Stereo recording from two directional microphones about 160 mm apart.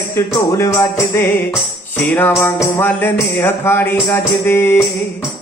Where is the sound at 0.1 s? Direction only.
20° left (ahead or behind).